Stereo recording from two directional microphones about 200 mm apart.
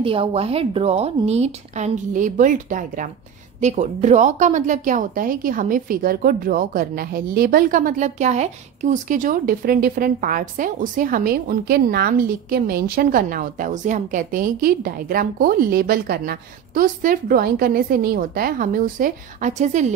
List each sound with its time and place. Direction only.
0.0 s a woman's voice: 25° right (ahead or behind)